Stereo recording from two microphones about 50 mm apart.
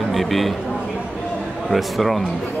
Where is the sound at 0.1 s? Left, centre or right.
Centre.